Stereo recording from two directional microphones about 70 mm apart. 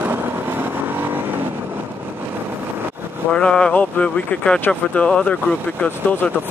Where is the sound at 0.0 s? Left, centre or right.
Right.